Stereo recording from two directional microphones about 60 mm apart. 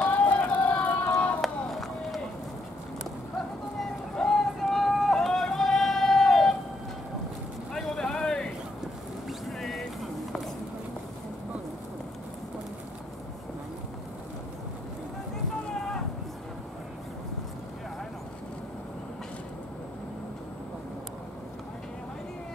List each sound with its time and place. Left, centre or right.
0.0 s music: left
1.4 s run: centre
3.8 s vehicle: centre
7.7 s vehicle: centre
9.5 s boat: centre
15.7 s a sound: centre